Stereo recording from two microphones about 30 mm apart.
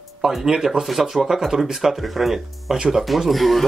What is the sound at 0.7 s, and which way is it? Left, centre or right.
Speech, centre.